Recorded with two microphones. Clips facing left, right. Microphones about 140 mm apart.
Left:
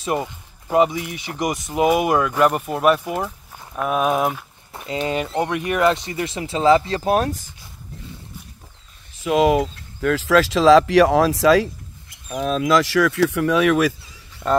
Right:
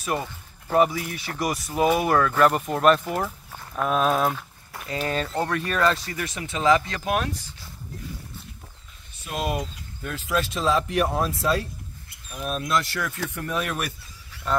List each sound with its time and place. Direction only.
0.0 s speech: 20° left (ahead or behind)
4.7 s speech: 20° left (ahead or behind); by 7.5 s 45° left (ahead or behind)
9.1 s speech: 90° left